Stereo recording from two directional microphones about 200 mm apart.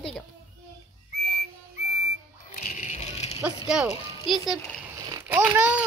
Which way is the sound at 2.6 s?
40° left (ahead or behind).